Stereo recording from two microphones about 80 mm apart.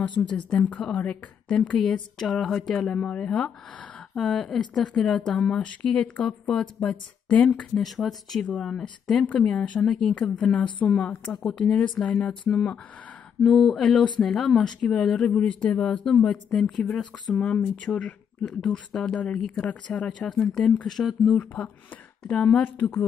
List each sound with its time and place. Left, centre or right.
0.3 s speech: centre
7.8 s speech: centre
9.9 s speech: centre
20.8 s speech: centre
21.3 s speech: centre